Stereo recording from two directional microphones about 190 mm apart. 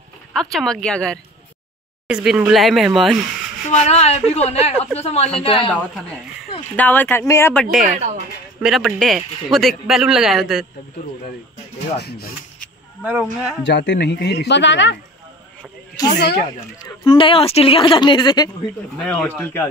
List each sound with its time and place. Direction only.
0.3 s speech: centre (ahead or behind)
3.6 s speech: 35° left (ahead or behind)
5.7 s speech: 5° left (ahead or behind)
7.8 s a woman's voice: 45° right (ahead or behind)
8.6 s speech: centre (ahead or behind)
12.0 s speech: 60° left (ahead or behind)
13.0 s speech: 5° right (ahead or behind)
13.7 s speech: 65° left (ahead or behind)
16.2 s speech: 60° left (ahead or behind)
16.5 s speech: 25° left (ahead or behind)
18.9 s speech: 5° left (ahead or behind)